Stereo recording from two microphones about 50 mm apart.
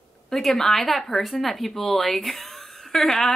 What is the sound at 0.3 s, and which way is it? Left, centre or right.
Speech, centre.